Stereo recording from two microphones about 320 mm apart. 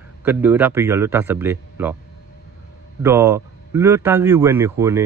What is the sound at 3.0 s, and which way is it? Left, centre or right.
A man's voice, centre.